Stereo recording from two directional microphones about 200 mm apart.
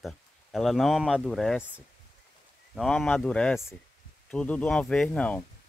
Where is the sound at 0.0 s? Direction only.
Centre (ahead or behind).